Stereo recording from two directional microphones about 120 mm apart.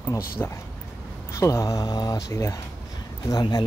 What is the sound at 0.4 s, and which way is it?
Speech, 20° left (ahead or behind).